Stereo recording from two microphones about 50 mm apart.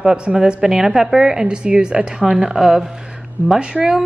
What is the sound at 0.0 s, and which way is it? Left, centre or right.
A woman's voice, centre.